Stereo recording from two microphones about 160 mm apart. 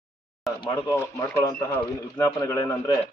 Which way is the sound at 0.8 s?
15° left (ahead or behind).